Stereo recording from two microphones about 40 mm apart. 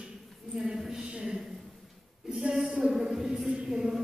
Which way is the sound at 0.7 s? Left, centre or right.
Centre.